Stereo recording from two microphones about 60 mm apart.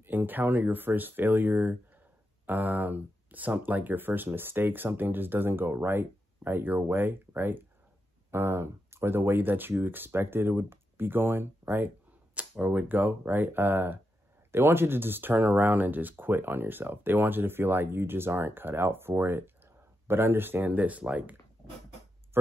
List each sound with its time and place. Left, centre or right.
0.0 s speech: right
12.4 s speech: right
20.7 s speech: right
22.3 s a sound: right